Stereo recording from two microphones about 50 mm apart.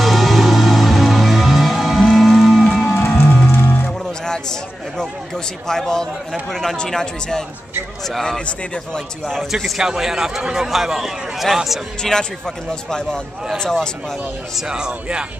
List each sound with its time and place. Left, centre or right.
0.0 s music: centre
3.2 s music: left
3.8 s a sound: centre
6.5 s a man's voice: centre
12.0 s speech: centre
14.7 s a man's voice: centre